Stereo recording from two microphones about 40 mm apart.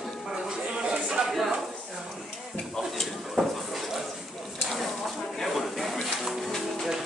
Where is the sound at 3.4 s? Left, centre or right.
Centre.